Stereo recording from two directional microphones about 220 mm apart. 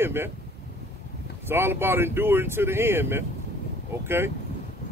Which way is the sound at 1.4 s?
10° right (ahead or behind).